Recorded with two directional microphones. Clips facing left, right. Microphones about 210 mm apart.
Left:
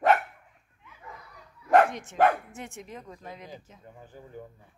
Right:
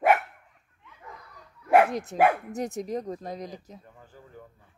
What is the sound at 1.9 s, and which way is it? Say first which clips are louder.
Speech: right 1 dB; 40° right (ahead or behind).